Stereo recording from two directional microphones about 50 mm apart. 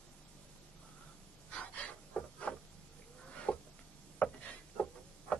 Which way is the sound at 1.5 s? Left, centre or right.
Left.